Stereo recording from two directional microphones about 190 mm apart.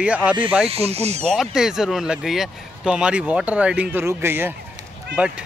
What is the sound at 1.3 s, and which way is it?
Speech, centre (ahead or behind).